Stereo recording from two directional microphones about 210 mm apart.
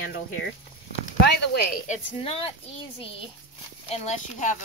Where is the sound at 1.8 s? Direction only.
30° left (ahead or behind).